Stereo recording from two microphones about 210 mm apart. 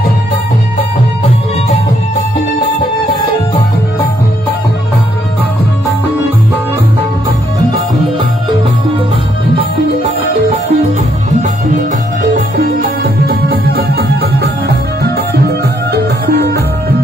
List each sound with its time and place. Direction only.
10.3 s music: 30° right (ahead or behind); by 16.6 s 50° right (ahead or behind)